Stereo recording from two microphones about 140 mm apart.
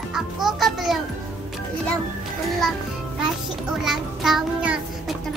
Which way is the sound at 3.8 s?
Centre (ahead or behind).